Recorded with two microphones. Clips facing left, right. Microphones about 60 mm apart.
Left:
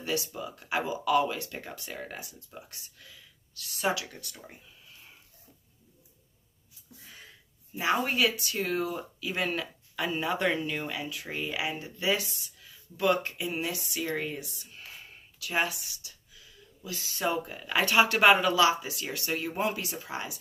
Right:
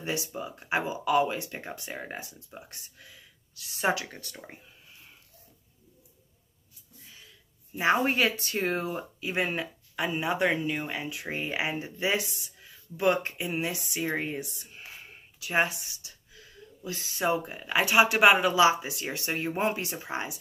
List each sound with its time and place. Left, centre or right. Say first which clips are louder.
0.3 s speech: right 2 dB; right
3.8 s speech: right 2 dB; right
7.8 s speech: right 2 dB; right
15.3 s a sound: right 3 dB; right
17.2 s speech: right 2 dB; right